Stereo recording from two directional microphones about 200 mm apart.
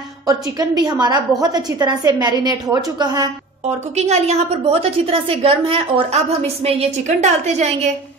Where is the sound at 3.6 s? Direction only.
35° right (ahead or behind).